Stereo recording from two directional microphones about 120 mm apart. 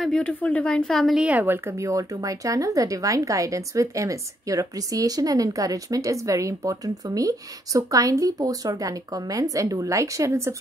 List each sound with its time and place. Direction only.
0.0 s speech: 5° left (ahead or behind)
1.2 s speech: 15° right (ahead or behind)